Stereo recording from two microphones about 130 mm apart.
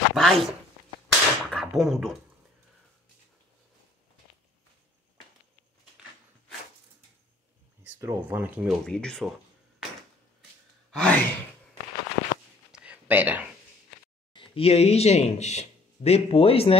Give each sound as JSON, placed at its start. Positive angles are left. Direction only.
{"t": 0.1, "sound": "a sound", "side_deg": 0}
{"t": 1.0, "sound": "whip", "side_deg": 0}
{"t": 8.0, "sound": "speech", "side_deg": -20}
{"t": 8.6, "sound": "speech", "side_deg": 5}
{"t": 10.9, "sound": "sigh", "side_deg": 10}
{"t": 12.7, "sound": "a sound", "side_deg": -10}
{"t": 14.3, "sound": "speech", "side_deg": 40}